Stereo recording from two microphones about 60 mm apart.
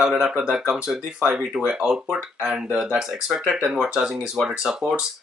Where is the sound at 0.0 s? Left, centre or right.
Centre.